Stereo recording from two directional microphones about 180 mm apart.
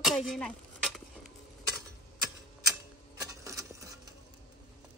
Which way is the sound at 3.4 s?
15° right (ahead or behind).